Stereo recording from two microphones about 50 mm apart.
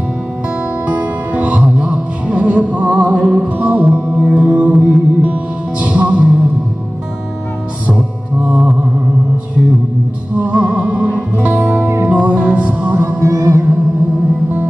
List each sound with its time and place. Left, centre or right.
0.8 s music: right
7.8 s music: right
10.3 s music: right
13.2 s music: right